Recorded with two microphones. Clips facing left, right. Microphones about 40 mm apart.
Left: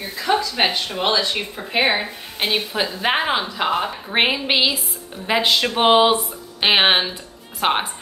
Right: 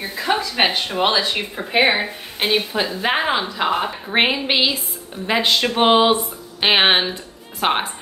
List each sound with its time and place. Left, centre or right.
0.2 s a sound: right
0.6 s speech: centre
1.8 s a woman's voice: centre